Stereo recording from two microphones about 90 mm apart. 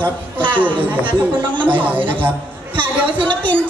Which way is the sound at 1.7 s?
20° right (ahead or behind).